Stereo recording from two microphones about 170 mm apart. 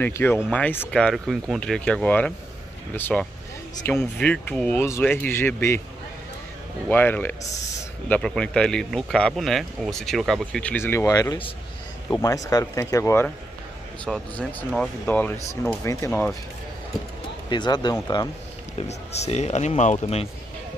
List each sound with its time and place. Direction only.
0.0 s speech: 10° left (ahead or behind)
6.9 s speech: 10° left (ahead or behind)
14.4 s speech: 5° left (ahead or behind)
16.1 s speech: 5° left (ahead or behind)
17.5 s speech: 25° left (ahead or behind)
18.8 s speech: 40° left (ahead or behind)